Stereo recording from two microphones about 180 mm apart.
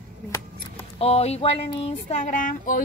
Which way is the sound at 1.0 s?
35° left (ahead or behind).